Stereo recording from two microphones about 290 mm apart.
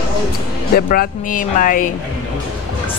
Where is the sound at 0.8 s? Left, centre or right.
Left.